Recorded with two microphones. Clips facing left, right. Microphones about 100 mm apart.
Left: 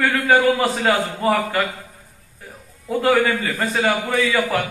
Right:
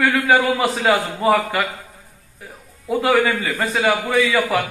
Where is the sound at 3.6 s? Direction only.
20° right (ahead or behind).